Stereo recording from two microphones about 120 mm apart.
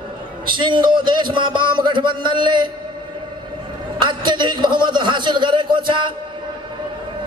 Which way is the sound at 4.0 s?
40° right (ahead or behind).